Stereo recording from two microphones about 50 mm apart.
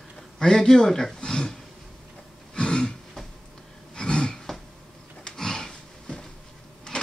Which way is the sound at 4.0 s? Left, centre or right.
Centre.